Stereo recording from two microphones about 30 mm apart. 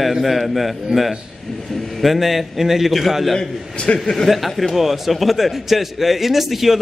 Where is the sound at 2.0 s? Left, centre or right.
Centre.